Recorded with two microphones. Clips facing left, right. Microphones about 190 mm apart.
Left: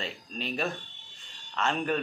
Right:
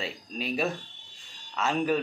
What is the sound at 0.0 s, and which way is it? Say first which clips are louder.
Speech: right 2 dB; 5° right (ahead or behind).